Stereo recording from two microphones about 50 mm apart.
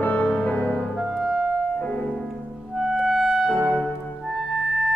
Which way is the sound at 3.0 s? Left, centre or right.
Centre.